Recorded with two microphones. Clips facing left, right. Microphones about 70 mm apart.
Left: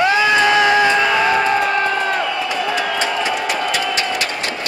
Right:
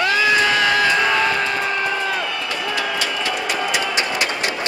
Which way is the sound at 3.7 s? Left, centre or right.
Centre.